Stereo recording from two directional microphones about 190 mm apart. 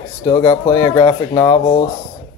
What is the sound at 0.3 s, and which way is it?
Speech, 25° left (ahead or behind).